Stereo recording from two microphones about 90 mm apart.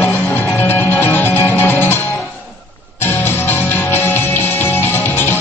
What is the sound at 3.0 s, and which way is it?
Music, 25° left (ahead or behind).